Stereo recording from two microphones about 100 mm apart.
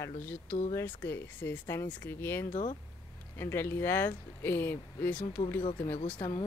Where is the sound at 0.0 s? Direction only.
20° left (ahead or behind).